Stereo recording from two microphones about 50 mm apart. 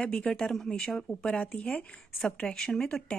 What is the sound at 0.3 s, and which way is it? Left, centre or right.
Speech, centre.